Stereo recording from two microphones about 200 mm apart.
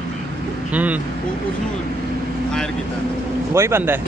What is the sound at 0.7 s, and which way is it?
Speech, 5° right (ahead or behind).